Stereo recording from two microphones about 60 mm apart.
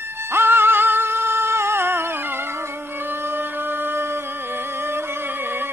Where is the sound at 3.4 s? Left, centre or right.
Right.